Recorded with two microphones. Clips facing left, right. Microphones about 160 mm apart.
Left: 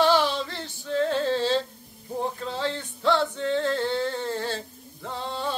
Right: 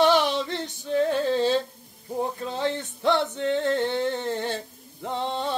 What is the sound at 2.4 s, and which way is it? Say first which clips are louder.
Male singing: right 2 dB; 15° right (ahead or behind).